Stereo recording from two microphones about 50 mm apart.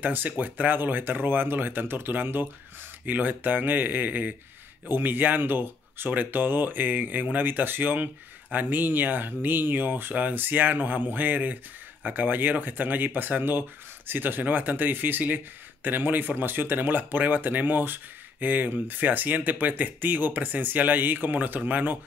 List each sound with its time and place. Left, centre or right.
0.0 s speech: right